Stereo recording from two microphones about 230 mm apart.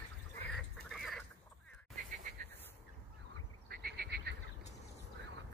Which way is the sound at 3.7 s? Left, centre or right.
Right.